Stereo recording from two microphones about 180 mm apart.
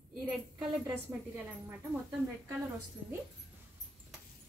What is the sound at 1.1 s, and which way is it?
Speech, 10° right (ahead or behind).